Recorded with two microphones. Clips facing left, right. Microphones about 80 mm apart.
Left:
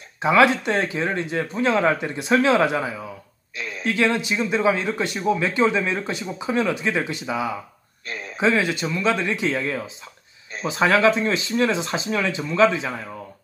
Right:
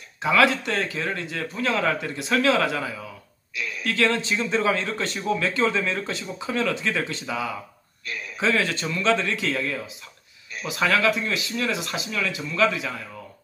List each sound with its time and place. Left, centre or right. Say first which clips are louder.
0.2 s a man's voice: left 3 dB; left